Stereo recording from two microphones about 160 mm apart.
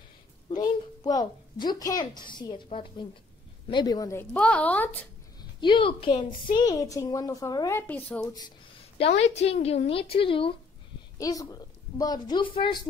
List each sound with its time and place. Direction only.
0.5 s a woman's voice: 25° left (ahead or behind)
4.3 s speech: 5° left (ahead or behind)
5.4 s a woman's voice: 30° left (ahead or behind); by 8.3 s 10° left (ahead or behind)
8.4 s a sound: 30° left (ahead or behind)
9.2 s a woman's voice: 40° left (ahead or behind)
11.1 s a woman's voice: 20° left (ahead or behind)